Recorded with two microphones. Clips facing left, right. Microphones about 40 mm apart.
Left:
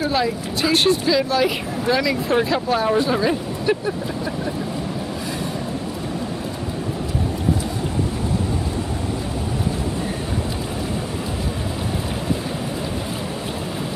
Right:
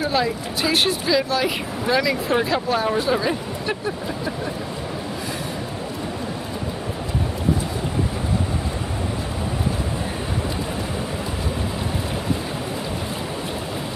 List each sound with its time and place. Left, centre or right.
0.0 s speech: centre